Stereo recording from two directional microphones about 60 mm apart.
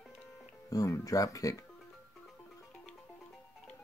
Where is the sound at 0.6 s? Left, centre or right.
Left.